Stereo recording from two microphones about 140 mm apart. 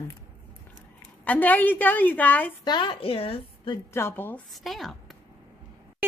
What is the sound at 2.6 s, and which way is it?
A woman's voice, 35° left (ahead or behind).